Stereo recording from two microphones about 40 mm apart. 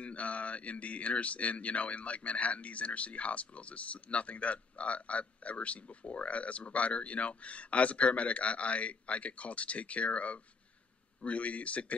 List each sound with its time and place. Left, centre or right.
0.0 s speech: left